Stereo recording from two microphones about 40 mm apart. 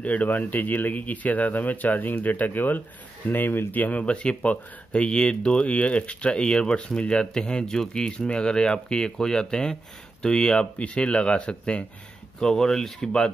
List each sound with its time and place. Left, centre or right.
0.0 s speech: left
4.1 s speech: left
12.4 s speech: centre